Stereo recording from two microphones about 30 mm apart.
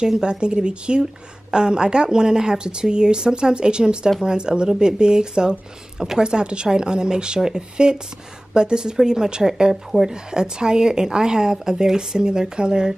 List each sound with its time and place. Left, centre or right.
0.2 s a woman's voice: right